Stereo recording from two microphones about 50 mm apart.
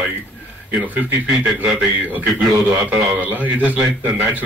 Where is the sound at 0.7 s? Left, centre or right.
Right.